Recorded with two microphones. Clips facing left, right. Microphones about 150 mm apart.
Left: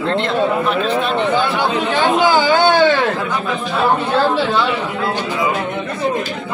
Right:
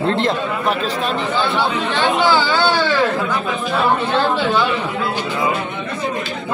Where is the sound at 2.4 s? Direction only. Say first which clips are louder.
Left 5 dB; 50° left (ahead or behind).